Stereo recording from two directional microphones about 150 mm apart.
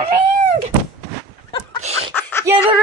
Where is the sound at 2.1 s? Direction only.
15° left (ahead or behind).